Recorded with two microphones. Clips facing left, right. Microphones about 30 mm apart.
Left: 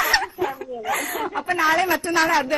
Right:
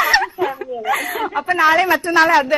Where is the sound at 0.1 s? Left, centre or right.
Right.